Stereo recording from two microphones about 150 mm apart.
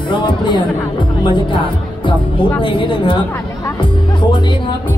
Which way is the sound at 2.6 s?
35° left (ahead or behind).